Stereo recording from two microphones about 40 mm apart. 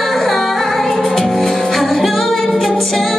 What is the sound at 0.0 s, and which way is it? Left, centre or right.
Music, centre.